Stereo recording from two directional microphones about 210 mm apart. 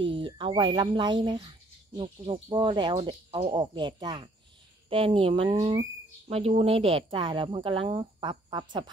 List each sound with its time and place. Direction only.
0.0 s speech: 25° right (ahead or behind)